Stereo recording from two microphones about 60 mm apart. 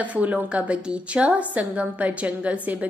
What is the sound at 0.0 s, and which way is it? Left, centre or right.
A woman's voice, right.